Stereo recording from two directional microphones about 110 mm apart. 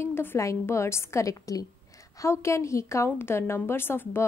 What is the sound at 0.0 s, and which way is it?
Speech, 20° left (ahead or behind).